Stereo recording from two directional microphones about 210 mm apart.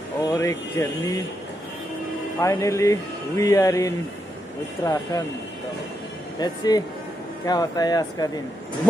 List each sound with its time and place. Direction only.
0.2 s speech: 15° left (ahead or behind)
2.3 s speech: 15° left (ahead or behind)
6.4 s speech: 20° left (ahead or behind)